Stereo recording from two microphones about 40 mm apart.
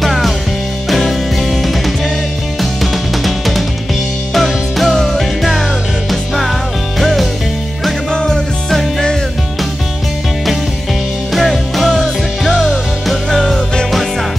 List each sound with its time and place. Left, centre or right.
0.0 s music: centre
8.1 s music: centre
8.6 s music: centre
11.3 s music: centre